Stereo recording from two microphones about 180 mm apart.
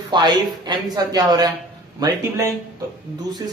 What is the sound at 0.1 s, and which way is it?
A man's voice, 25° right (ahead or behind).